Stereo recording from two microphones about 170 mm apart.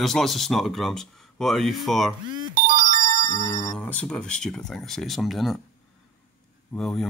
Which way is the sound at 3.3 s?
15° left (ahead or behind).